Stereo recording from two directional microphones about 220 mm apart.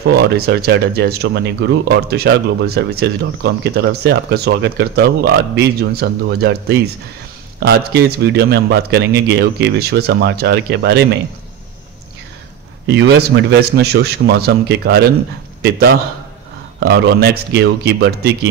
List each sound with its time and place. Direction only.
0.1 s speech: 45° right (ahead or behind)
7.6 s speech: 45° right (ahead or behind)
12.8 s speech: 50° right (ahead or behind)